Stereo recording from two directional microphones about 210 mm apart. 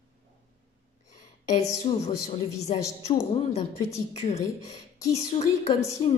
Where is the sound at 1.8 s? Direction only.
30° left (ahead or behind).